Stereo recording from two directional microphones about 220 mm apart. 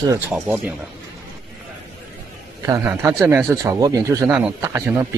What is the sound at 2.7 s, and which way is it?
Speech, 15° right (ahead or behind).